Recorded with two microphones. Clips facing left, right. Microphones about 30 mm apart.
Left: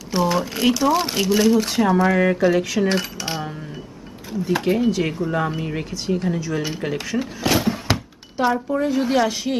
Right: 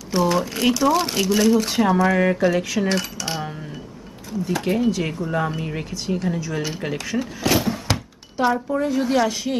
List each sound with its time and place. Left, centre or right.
0.1 s speech: centre
3.2 s music: centre
4.3 s speech: centre
4.6 s speech: centre
7.2 s a sound: centre
8.4 s a woman's voice: centre